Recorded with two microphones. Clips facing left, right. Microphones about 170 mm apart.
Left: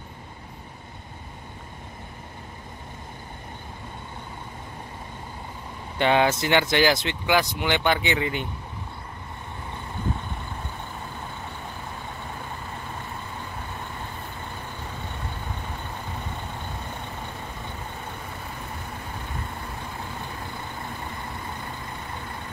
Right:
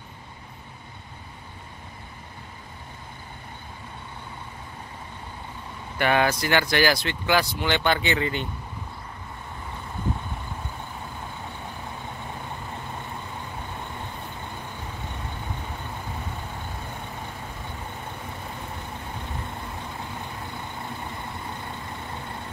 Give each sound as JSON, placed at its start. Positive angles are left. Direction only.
{"t": 5.9, "sound": "speech", "side_deg": 20}